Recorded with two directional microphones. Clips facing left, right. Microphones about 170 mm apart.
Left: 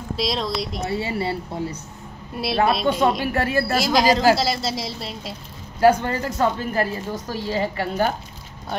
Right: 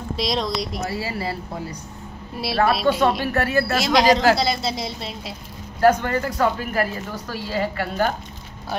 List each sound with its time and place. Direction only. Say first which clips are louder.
0.2 s a woman's voice: right 1 dB; centre (ahead or behind)
0.8 s speech: left 2 dB; 25° left (ahead or behind)
2.3 s a woman's voice: left 1 dB; centre (ahead or behind)
2.9 s speech: right 1 dB; 20° left (ahead or behind)
3.8 s a woman's voice: right 1 dB; centre (ahead or behind)
5.8 s speech: even; 25° left (ahead or behind)